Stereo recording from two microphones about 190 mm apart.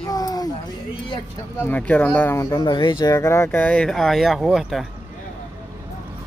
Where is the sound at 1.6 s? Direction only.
10° left (ahead or behind).